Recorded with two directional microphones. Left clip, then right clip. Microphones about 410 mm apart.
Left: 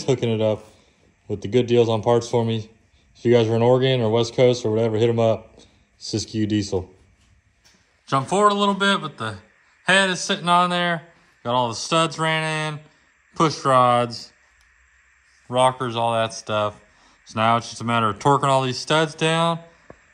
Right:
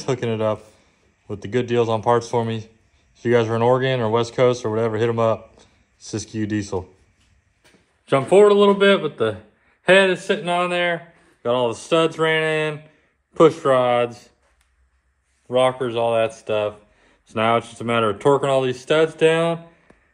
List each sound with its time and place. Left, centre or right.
0.0 s a man's voice: centre
8.1 s speech: centre
15.4 s speech: centre